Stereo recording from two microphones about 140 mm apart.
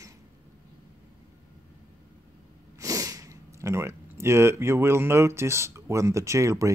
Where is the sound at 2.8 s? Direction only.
25° right (ahead or behind).